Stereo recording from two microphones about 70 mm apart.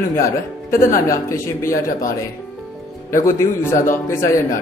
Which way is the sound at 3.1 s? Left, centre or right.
Left.